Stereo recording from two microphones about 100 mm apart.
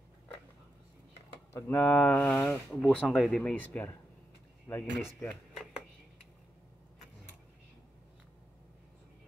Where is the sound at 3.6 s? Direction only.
15° left (ahead or behind).